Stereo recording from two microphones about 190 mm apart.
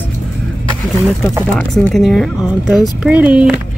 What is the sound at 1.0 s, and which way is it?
Speech, centre (ahead or behind).